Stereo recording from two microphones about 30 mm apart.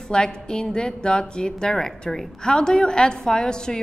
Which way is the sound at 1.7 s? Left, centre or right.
Centre.